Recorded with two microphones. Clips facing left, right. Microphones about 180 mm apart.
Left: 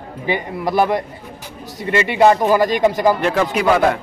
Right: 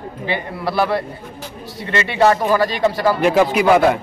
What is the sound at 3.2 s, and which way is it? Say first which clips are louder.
Speech: right 3 dB; 15° right (ahead or behind).